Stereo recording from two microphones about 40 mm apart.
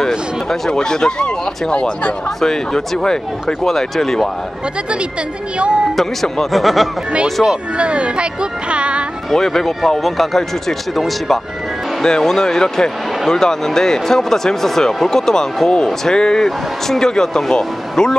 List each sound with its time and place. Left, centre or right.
0.5 s speech: centre
5.9 s speech: centre
6.5 s speech: centre
7.7 s speech: right
9.3 s speech: centre
12.0 s speech: centre